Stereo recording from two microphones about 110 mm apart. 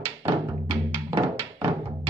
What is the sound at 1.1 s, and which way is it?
Music, 45° right (ahead or behind).